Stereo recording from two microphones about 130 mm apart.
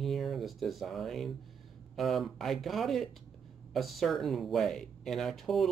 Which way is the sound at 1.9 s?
Centre (ahead or behind).